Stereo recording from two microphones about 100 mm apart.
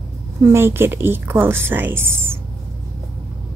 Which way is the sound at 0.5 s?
25° right (ahead or behind).